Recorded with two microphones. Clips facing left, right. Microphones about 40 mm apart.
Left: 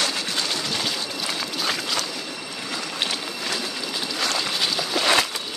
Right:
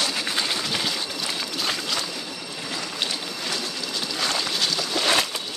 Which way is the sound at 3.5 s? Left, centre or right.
Centre.